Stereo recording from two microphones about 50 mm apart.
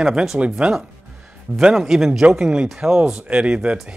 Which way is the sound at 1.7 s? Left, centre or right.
Centre.